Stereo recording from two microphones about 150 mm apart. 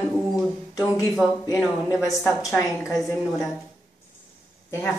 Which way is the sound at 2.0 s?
20° left (ahead or behind).